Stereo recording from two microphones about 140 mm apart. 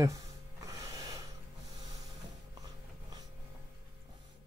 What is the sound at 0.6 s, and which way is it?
Snort, 25° right (ahead or behind).